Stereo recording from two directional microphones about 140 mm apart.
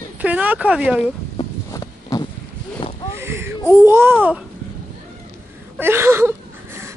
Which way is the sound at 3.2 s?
15° right (ahead or behind).